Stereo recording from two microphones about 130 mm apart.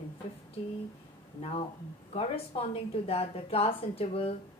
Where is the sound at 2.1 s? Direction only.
50° left (ahead or behind).